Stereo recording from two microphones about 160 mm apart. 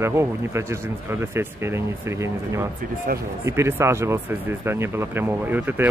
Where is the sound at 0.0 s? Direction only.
15° right (ahead or behind).